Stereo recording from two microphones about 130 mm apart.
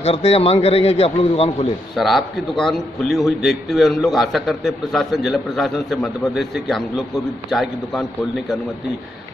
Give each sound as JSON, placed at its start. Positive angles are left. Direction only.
{"t": 0.0, "sound": "a man's voice", "side_deg": 50}
{"t": 2.0, "sound": "a man's voice", "side_deg": 0}